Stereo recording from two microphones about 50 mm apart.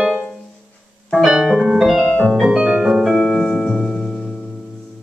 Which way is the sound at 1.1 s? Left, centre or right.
Centre.